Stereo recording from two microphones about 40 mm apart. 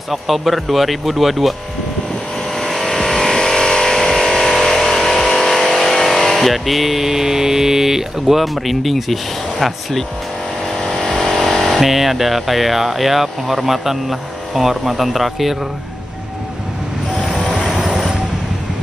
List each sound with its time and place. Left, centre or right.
0.1 s speech: centre
2.7 s vehicle: centre
6.4 s speech: centre
11.4 s vehicle: centre
11.8 s speech: centre
17.6 s vehicle: centre